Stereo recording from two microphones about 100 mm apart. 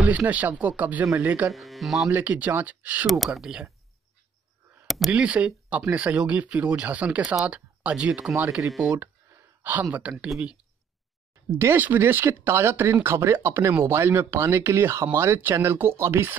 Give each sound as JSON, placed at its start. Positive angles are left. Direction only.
{"t": 0.0, "sound": "speech", "side_deg": -15}
{"t": 1.5, "sound": "speech", "side_deg": 0}
{"t": 2.0, "sound": "speech", "side_deg": -15}
{"t": 3.1, "sound": "speech", "side_deg": 0}
{"t": 4.8, "sound": "a sound", "side_deg": 0}
{"t": 5.1, "sound": "speech", "side_deg": -10}
{"t": 8.4, "sound": "speech", "side_deg": -30}
{"t": 8.9, "sound": "a sound", "side_deg": -20}
{"t": 9.8, "sound": "speech", "side_deg": -15}
{"t": 11.5, "sound": "speech", "side_deg": -25}